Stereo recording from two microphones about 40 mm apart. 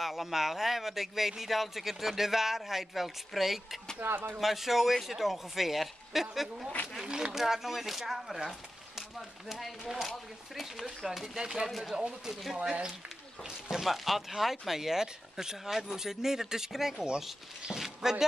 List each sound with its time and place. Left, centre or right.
0.0 s speech: centre
4.0 s speech: right
4.4 s speech: centre
11.1 s speech: centre
13.7 s speech: centre